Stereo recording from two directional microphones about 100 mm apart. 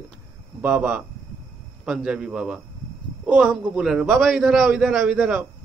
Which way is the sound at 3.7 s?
5° right (ahead or behind).